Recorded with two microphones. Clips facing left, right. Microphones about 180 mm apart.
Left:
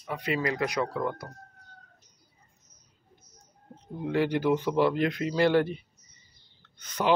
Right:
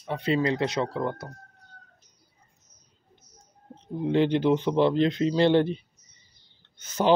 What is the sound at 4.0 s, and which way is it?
Speech, 25° right (ahead or behind).